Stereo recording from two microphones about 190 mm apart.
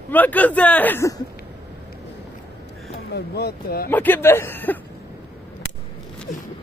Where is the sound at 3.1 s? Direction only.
60° left (ahead or behind).